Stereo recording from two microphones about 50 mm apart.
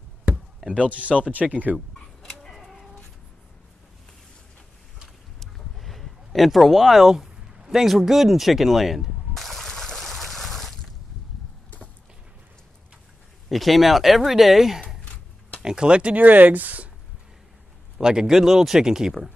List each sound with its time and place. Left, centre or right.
0.3 s chop: right
0.7 s speech: right
2.2 s chicken: centre
5.4 s a sound: centre
13.5 s speech: centre; by 16.2 s right
16.2 s speech: right
17.9 s speech: centre